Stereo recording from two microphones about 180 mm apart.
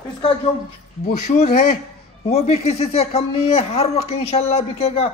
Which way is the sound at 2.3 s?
35° left (ahead or behind).